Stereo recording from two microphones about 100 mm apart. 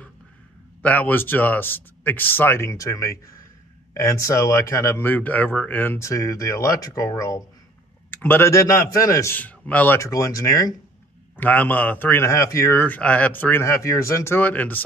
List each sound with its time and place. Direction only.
0.8 s speech: 15° left (ahead or behind); by 7.4 s 35° left (ahead or behind)
8.1 s speech: 20° left (ahead or behind); by 9.3 s 35° left (ahead or behind)
9.3 s speech: 15° left (ahead or behind)
9.9 s speech: 30° left (ahead or behind)
11.3 s speech: 15° left (ahead or behind)
12.8 s speech: 15° left (ahead or behind)